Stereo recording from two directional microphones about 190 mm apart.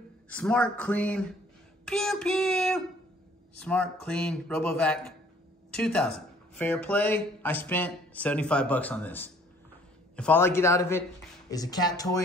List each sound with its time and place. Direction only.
0.3 s a man's voice: 5° left (ahead or behind)